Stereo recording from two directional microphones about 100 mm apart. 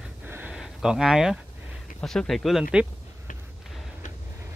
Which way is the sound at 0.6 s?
5° right (ahead or behind).